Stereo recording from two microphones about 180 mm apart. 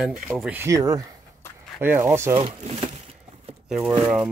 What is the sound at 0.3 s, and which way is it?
Speech, 5° right (ahead or behind).